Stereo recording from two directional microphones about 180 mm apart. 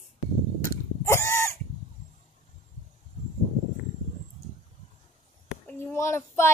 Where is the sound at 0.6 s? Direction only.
15° left (ahead or behind).